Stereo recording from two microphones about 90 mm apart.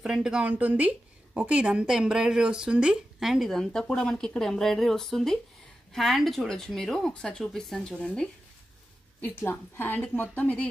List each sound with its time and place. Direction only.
0.0 s a woman's voice: 5° right (ahead or behind); by 8.3 s 10° left (ahead or behind)
9.4 s a woman's voice: 25° left (ahead or behind)